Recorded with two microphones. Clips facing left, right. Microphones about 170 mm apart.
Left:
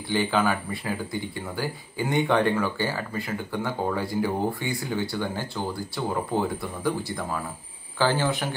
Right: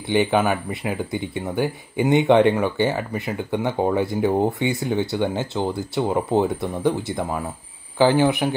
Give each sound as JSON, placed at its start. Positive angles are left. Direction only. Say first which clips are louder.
{"t": 0.1, "sound": "speech", "louder": "right 5 dB", "side_deg": -20}